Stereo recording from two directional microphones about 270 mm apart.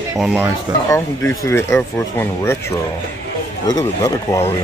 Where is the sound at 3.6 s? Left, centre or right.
Centre.